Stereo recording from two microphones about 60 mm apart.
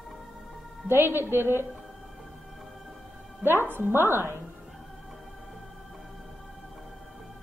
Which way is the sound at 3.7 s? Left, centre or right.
Right.